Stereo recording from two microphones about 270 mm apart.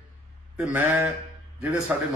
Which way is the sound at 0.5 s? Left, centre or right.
Centre.